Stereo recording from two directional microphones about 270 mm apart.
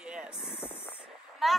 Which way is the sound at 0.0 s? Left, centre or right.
Centre.